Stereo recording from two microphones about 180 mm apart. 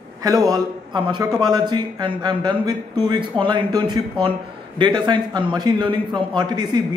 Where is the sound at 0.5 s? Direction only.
25° right (ahead or behind).